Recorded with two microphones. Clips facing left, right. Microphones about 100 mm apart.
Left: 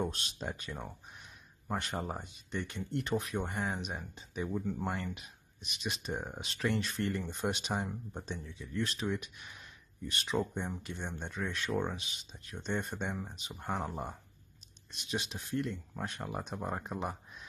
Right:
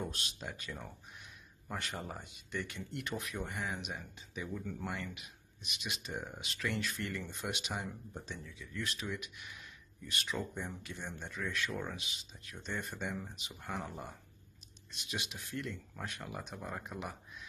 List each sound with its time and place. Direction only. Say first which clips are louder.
0.0 s speech: left 5 dB; 30° left (ahead or behind)
5.1 s speech: left 4 dB; 35° left (ahead or behind)